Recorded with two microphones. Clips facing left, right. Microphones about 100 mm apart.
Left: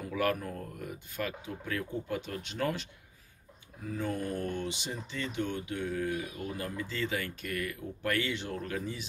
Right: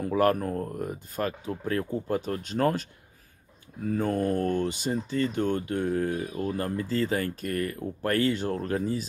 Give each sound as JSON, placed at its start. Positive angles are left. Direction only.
{"t": 0.0, "sound": "speech", "side_deg": -45}